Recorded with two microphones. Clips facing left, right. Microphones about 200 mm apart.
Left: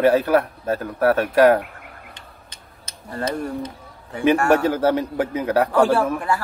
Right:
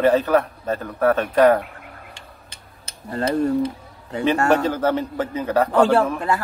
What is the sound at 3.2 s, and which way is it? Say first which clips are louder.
Mechanisms: right 5 dB; 20° right (ahead or behind).